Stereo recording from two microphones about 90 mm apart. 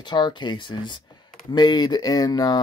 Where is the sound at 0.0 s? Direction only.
55° left (ahead or behind).